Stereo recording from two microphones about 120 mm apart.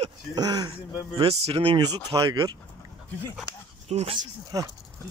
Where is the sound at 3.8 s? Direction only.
65° right (ahead or behind).